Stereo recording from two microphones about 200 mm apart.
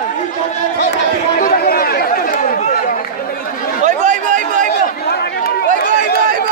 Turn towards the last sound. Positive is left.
turn(degrees=-40)  # may be behind; listen again after turning